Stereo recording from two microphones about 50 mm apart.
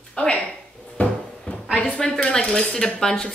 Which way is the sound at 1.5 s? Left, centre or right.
Left.